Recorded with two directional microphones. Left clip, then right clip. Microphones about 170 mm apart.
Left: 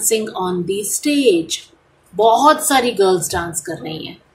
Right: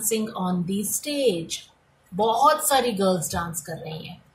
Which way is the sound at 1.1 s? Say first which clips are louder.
Left 9 dB; 40° left (ahead or behind).